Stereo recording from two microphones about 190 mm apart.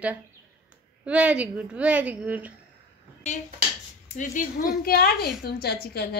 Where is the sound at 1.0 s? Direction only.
5° right (ahead or behind).